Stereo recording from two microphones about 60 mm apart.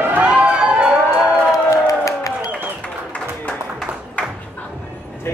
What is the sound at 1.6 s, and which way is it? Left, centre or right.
Crowd, left.